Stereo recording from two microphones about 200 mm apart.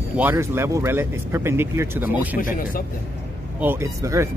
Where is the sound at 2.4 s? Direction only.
45° left (ahead or behind).